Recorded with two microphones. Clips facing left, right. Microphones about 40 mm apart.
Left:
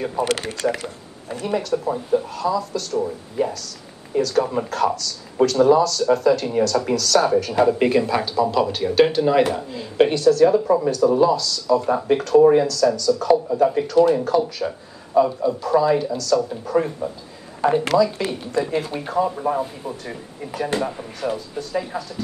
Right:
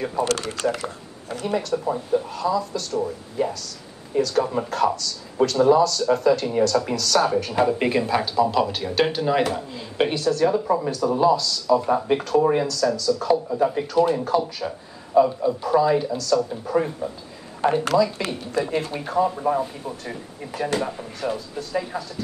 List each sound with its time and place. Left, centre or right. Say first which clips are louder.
0.2 s speech: left 1 dB; left
1.5 s speech: left 2 dB; centre
17.6 s speech: left 2 dB; right
17.9 s speech: left 2 dB; centre